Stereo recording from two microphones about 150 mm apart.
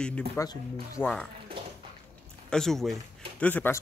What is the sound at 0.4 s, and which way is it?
Speech, 20° left (ahead or behind).